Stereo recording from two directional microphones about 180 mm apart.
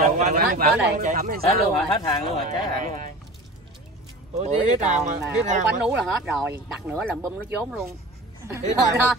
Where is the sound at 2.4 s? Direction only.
45° right (ahead or behind).